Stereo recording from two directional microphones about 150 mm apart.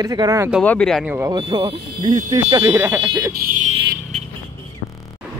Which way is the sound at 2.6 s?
15° right (ahead or behind).